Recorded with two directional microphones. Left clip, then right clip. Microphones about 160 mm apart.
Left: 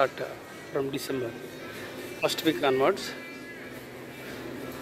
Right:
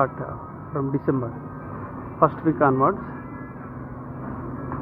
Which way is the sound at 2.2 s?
5° left (ahead or behind).